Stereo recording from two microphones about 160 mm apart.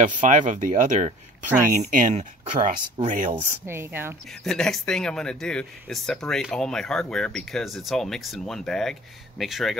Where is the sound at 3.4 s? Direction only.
15° right (ahead or behind).